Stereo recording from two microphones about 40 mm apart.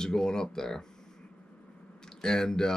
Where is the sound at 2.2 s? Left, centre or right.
Centre.